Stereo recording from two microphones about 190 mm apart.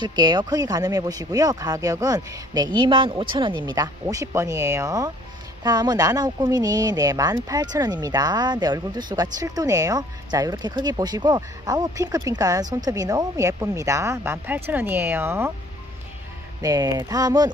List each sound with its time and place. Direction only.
0.0 s speech: 20° right (ahead or behind)
16.6 s speech: 20° right (ahead or behind)